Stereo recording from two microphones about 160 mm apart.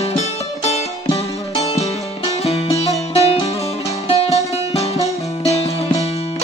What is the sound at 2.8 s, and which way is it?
Music, 40° left (ahead or behind).